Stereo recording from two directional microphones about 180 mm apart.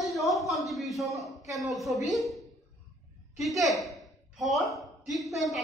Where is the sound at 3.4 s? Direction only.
Centre (ahead or behind).